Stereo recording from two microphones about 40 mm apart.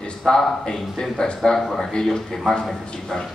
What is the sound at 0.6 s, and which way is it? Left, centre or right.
Speech, centre.